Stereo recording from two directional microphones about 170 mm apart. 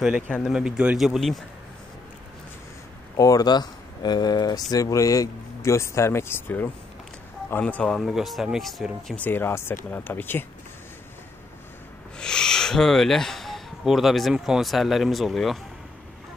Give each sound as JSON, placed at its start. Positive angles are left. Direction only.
{"t": 0.0, "sound": "speech", "side_deg": 0}
{"t": 3.2, "sound": "speech", "side_deg": 20}
{"t": 12.2, "sound": "speech", "side_deg": 5}